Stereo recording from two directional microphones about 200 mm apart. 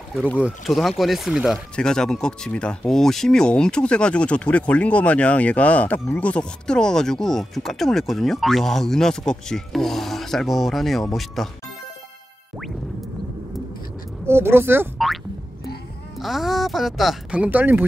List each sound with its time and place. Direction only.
0.4 s speech: 5° right (ahead or behind)
14.2 s speech: 10° right (ahead or behind)
16.2 s speech: centre (ahead or behind)